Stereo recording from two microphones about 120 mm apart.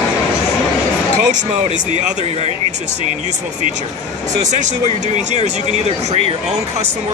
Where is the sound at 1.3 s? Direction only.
90° right; by 2.5 s 60° right (ahead or behind).